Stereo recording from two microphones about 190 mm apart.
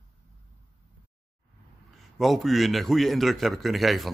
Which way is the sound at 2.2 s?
Centre (ahead or behind).